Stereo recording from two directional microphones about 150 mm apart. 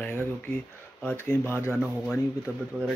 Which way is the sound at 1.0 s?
10° left (ahead or behind).